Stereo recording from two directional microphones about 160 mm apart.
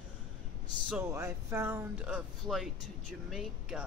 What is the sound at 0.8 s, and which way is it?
A man's voice, 15° right (ahead or behind).